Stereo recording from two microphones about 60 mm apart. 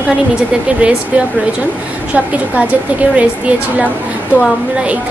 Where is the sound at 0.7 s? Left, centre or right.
Centre.